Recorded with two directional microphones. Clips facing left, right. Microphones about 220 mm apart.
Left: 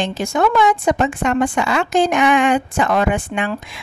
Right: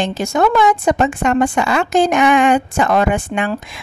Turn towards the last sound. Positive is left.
turn(degrees=-45)  # may be behind; listen again after turning